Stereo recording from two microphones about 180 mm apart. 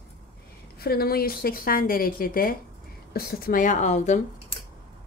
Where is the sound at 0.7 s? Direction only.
60° left (ahead or behind); by 4.5 s 40° left (ahead or behind).